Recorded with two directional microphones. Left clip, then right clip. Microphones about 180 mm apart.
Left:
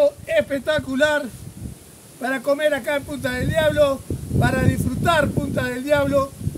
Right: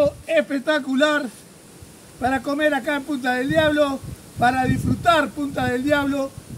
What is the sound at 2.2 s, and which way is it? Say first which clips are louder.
A man's voice: left 1 dB; 30° left (ahead or behind).